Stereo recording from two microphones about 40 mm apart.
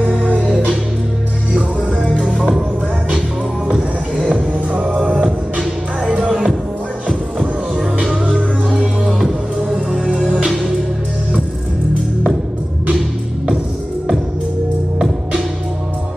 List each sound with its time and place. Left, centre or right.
0.2 s music: right
2.1 s music: centre
3.6 s music: centre
4.5 s music: right
7.7 s music: centre